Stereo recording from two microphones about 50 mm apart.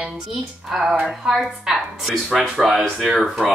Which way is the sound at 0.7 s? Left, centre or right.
Centre.